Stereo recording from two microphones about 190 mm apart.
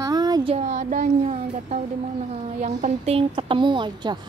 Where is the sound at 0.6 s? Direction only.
40° right (ahead or behind).